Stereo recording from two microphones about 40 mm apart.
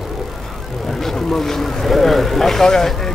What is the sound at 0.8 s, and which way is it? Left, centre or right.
Speech, centre.